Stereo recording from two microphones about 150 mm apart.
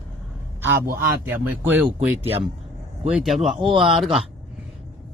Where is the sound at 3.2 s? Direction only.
Centre (ahead or behind).